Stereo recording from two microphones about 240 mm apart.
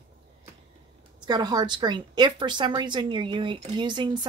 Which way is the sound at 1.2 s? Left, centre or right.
Centre.